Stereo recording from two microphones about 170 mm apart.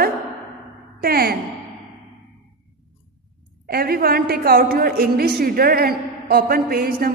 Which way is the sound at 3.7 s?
60° right (ahead or behind).